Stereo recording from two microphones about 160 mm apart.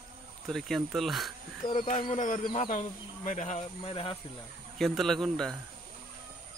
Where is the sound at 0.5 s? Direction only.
Centre (ahead or behind).